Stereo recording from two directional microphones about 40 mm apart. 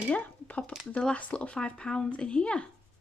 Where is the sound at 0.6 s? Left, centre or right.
Left.